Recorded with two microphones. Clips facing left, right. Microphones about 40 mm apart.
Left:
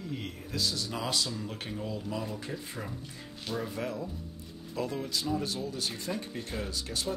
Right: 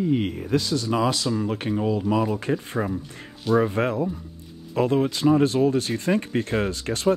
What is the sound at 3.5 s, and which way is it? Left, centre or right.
Speech, right.